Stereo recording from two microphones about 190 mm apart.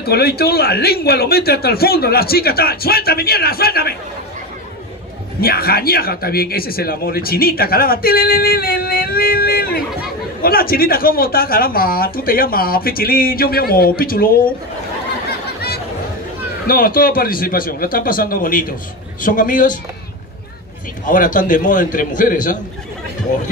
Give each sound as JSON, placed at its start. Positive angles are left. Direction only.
{"t": 0.0, "sound": "speech", "side_deg": 55}
{"t": 5.4, "sound": "speech", "side_deg": 50}
{"t": 16.6, "sound": "speech", "side_deg": 50}
{"t": 21.0, "sound": "speech", "side_deg": 45}